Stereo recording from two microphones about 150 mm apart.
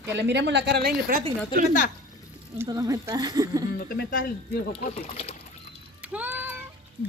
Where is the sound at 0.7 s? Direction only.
90° right.